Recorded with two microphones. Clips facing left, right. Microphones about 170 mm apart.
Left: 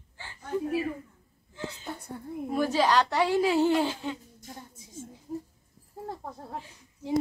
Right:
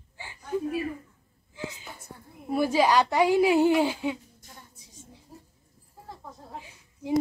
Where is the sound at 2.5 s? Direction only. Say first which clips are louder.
Right 2 dB; 10° right (ahead or behind).